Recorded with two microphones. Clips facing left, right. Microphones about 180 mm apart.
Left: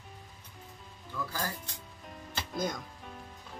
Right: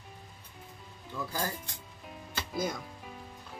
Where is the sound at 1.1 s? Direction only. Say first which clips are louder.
Right 2 dB; 25° right (ahead or behind).